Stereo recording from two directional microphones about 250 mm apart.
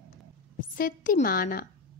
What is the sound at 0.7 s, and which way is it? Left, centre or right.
Speech, left.